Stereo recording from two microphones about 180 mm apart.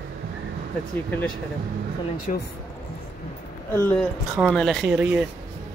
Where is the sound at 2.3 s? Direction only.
45° left (ahead or behind).